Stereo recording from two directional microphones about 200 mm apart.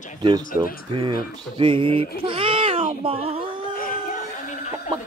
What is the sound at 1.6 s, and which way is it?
Speech, 25° right (ahead or behind).